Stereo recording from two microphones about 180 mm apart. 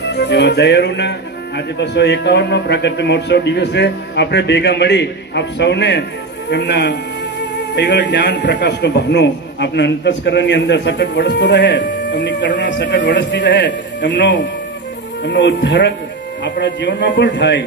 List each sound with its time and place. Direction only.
0.0 s music: 70° left (ahead or behind)
1.8 s a man's voice: 75° left (ahead or behind)